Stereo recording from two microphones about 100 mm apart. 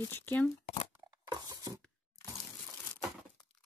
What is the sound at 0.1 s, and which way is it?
Speech, 20° left (ahead or behind).